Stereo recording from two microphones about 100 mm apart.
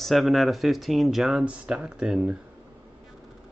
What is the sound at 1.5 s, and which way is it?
Speech, 10° right (ahead or behind).